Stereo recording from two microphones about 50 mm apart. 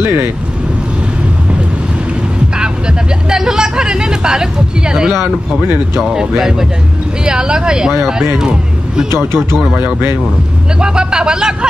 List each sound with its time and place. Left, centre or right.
0.0 s speech: right
2.5 s a sound: centre
6.1 s speech: centre
10.8 s speech: centre